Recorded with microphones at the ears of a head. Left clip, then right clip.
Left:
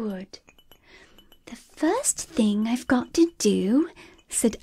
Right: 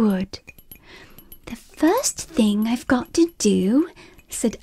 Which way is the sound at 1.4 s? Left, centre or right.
Right.